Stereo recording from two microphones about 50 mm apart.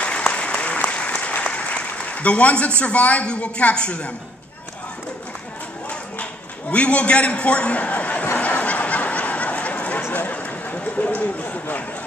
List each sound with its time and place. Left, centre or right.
0.3 s applause: left
2.8 s a man's voice: left
6.7 s a man's voice: left
8.4 s snicker: left
10.1 s a sound: left